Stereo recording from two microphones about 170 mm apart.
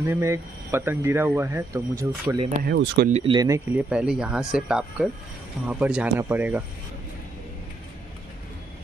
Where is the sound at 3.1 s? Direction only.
40° right (ahead or behind).